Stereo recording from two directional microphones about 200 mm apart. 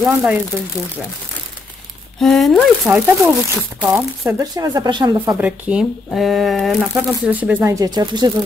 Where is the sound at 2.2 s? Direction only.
Centre (ahead or behind); by 5.1 s 20° right (ahead or behind).